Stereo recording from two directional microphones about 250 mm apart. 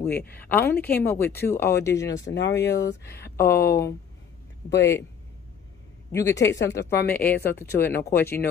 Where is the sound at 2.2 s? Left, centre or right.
Left.